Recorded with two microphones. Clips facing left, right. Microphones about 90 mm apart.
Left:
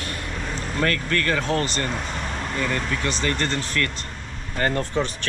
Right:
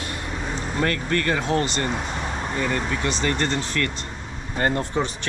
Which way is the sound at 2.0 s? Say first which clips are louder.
Right 1 dB; 15° right (ahead or behind).